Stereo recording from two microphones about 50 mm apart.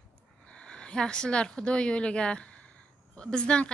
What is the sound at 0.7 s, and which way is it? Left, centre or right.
A woman's voice, centre.